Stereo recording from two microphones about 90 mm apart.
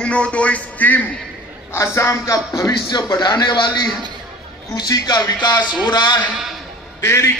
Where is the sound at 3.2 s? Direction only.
55° left (ahead or behind).